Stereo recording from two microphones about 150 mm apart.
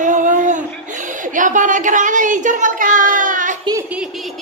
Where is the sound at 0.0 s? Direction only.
60° right (ahead or behind).